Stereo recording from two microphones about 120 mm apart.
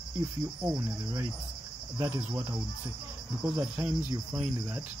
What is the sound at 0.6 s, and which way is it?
Speech, 20° right (ahead or behind).